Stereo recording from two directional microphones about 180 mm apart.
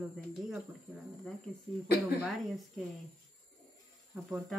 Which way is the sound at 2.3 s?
Centre (ahead or behind).